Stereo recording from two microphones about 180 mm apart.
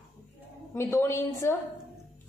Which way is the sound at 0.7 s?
15° left (ahead or behind).